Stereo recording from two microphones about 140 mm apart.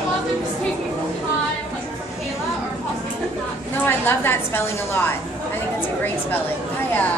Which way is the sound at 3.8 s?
15° left (ahead or behind).